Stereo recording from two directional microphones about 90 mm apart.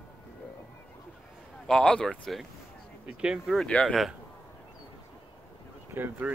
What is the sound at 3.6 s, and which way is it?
Speech, 10° left (ahead or behind).